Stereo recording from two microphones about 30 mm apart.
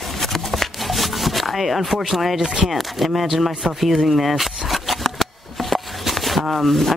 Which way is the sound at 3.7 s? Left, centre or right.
Centre.